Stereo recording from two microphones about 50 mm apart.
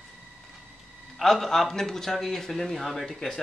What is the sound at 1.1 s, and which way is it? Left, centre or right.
A man's voice, centre.